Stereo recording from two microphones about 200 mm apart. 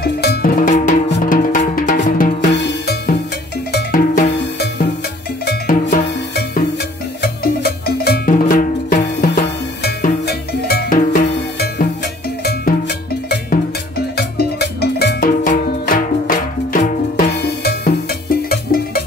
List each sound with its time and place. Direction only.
0.0 s cowbell: 50° left (ahead or behind)
1.2 s music: 40° left (ahead or behind)
2.0 s drum: 45° left (ahead or behind)
2.5 s drum kit: 55° left (ahead or behind)
3.7 s cowbell: 50° left (ahead or behind)
6.0 s music: 55° left (ahead or behind)
7.2 s cowbell: 50° left (ahead or behind)
9.8 s cowbell: 50° left (ahead or behind)